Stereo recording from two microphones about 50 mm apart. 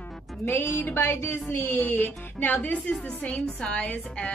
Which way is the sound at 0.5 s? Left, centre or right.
Left.